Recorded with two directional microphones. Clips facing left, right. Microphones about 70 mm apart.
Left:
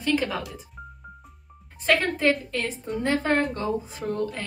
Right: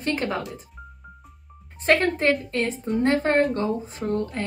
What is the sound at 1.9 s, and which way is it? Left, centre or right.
A woman's voice, right.